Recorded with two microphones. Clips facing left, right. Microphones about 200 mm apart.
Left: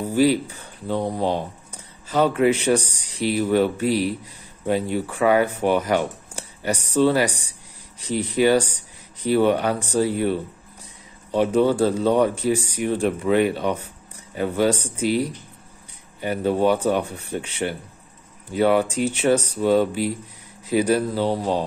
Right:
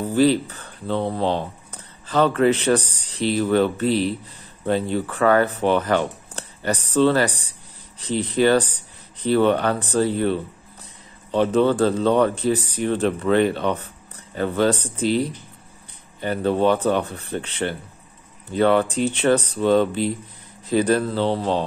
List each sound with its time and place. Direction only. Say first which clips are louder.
0.0 s speech: right 1 dB; 10° left (ahead or behind)